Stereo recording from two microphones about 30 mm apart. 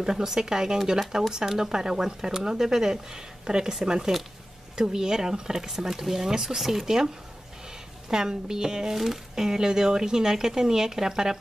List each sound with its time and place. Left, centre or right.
0.0 s speech: centre
8.1 s speech: right
8.9 s speech: centre
9.3 s speech: centre